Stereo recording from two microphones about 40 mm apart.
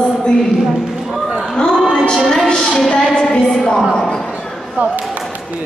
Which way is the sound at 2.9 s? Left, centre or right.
Left.